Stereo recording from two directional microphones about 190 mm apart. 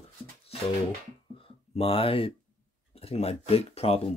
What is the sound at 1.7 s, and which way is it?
Speech, 30° left (ahead or behind).